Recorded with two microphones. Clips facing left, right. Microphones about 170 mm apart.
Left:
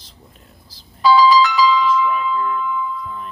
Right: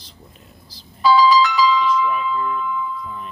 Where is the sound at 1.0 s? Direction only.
90° left.